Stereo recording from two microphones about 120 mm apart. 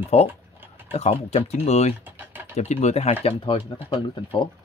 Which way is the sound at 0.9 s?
60° left (ahead or behind).